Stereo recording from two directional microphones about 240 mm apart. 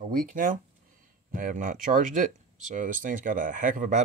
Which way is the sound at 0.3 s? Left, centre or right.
Right.